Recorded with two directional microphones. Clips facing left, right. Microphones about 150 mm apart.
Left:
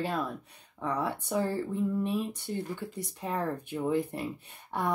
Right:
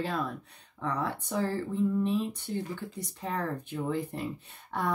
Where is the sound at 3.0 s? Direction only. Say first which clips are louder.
Left 1 dB; 15° left (ahead or behind).